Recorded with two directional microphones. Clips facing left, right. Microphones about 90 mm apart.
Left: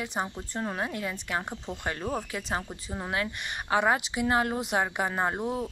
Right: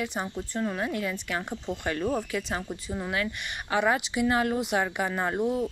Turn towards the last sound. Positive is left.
turn(degrees=30)  # may be behind; listen again after turning